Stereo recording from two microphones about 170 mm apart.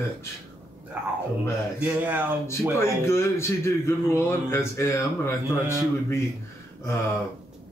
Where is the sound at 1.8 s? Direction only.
10° right (ahead or behind).